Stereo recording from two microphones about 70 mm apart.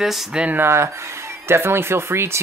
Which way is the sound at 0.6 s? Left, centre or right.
Right.